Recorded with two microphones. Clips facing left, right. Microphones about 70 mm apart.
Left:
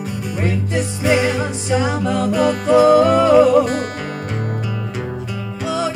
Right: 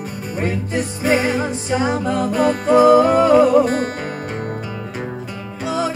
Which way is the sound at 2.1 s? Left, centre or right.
Right.